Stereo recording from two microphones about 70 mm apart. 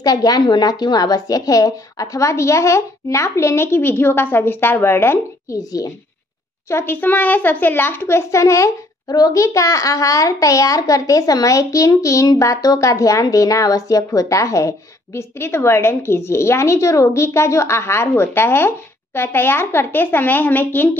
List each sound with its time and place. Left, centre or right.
0.0 s a child's voice: left
5.5 s speech: left
6.7 s a child's voice: left
9.1 s a child's voice: left